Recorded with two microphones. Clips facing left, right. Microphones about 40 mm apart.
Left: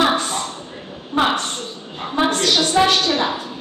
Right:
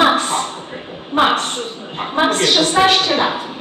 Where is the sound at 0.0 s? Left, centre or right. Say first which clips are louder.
Right 4 dB; right.